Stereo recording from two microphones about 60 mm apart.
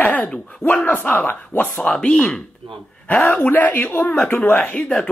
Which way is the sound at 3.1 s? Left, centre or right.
Left.